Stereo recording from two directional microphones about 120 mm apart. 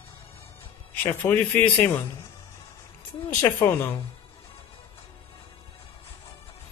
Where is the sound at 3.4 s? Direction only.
20° left (ahead or behind).